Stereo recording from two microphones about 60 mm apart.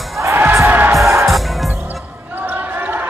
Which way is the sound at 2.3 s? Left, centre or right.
Right.